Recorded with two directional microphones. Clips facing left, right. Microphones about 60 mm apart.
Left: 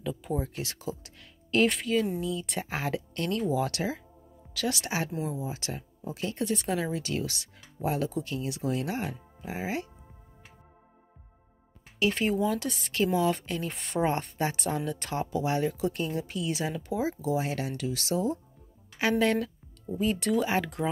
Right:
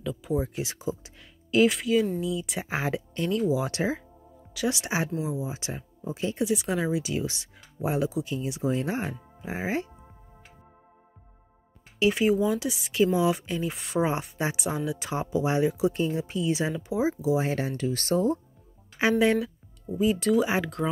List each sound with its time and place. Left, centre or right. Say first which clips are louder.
0.0 s speech: right 3 dB; centre
0.4 s speech: right 4 dB; centre
1.5 s speech: right 3 dB; centre
2.7 s speech: right 4 dB; centre
3.3 s speech: right 2 dB; centre
3.7 s speech: right 4 dB; right
6.4 s speech: right 3 dB; centre; by 9.8 s right
12.1 s speech: right 5 dB; centre
14.1 s speech: right 1 dB; centre
15.1 s speech: right 3 dB; centre
17.4 s speech: right 4 dB; right
18.9 s speech: right 3 dB; centre
20.0 s speech: right 4 dB; centre